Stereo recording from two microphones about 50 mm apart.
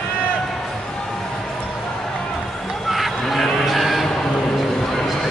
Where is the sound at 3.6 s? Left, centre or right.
Centre.